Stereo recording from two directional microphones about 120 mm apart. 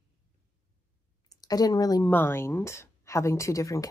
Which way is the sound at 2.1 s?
20° left (ahead or behind).